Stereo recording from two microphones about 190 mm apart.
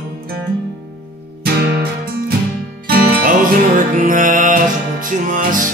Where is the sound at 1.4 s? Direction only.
55° right (ahead or behind).